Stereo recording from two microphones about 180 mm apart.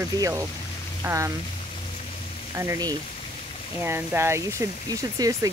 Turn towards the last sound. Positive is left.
turn(degrees=-15)  # may be behind; listen again after turning